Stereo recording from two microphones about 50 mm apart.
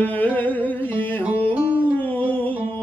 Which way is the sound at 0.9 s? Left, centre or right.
Left.